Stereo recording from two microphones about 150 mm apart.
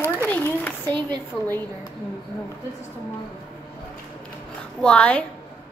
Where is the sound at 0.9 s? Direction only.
30° right (ahead or behind).